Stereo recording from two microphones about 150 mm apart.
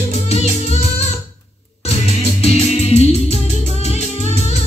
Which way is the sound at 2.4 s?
45° left (ahead or behind).